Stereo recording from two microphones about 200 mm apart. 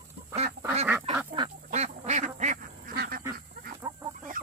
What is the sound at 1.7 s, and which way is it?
Duck, 35° right (ahead or behind).